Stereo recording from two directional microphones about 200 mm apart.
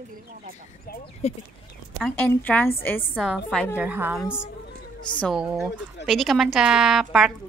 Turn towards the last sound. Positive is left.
turn(degrees=0)  # may be behind; listen again after turning